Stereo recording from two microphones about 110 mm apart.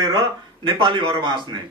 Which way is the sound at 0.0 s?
40° right (ahead or behind).